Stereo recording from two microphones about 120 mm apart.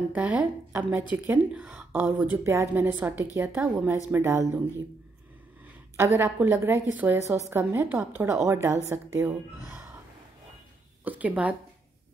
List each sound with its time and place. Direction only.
0.1 s a woman's voice: 10° right (ahead or behind)
4.1 s a woman's voice: 20° right (ahead or behind)
5.9 s a woman's voice: 20° right (ahead or behind)
11.1 s a woman's voice: 10° right (ahead or behind)